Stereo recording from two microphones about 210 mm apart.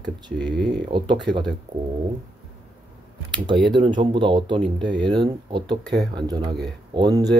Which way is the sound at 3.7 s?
20° right (ahead or behind).